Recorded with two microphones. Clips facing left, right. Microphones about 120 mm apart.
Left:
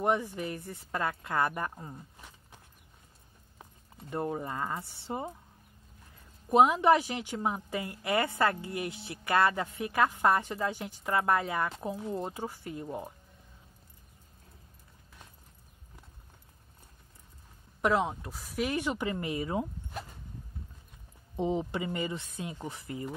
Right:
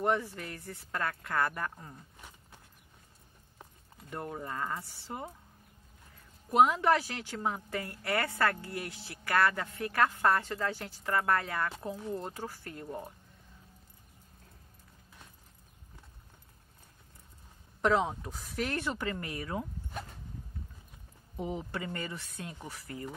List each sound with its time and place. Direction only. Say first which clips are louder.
0.0 s speech: left 2 dB; 15° left (ahead or behind)
4.0 s speech: left 6 dB; 25° left (ahead or behind)
6.5 s speech: left 3 dB; 20° left (ahead or behind)
17.8 s speech: even; centre (ahead or behind); by 19.7 s 20° left (ahead or behind)
19.9 s dog: left 1 dB; 5° left (ahead or behind)
21.4 s speech: left 6 dB; 20° left (ahead or behind)